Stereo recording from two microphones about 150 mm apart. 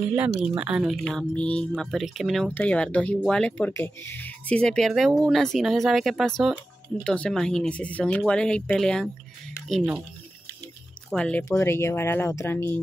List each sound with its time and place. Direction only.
0.4 s speech: 10° right (ahead or behind)
1.0 s speech: 5° left (ahead or behind)
11.1 s speech: 5° left (ahead or behind)